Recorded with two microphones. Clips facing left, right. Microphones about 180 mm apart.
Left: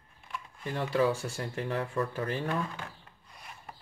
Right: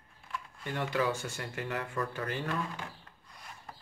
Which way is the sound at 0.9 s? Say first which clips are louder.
Left 5 dB; 30° left (ahead or behind).